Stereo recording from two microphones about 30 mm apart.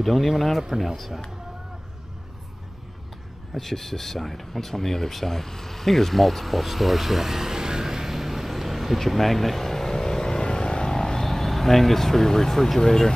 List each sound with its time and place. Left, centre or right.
0.0 s speech: centre
0.7 s speech: centre
3.5 s speech: centre; by 11.0 s left
11.1 s speech: centre